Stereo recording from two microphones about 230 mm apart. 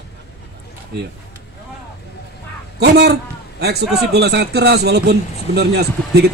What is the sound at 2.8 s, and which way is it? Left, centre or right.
A man's voice, right.